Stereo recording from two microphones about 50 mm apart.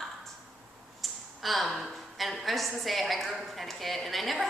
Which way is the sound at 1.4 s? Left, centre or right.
Centre.